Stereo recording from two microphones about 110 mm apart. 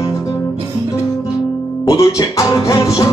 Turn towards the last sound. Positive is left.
turn(degrees=30)  # may be behind; listen again after turning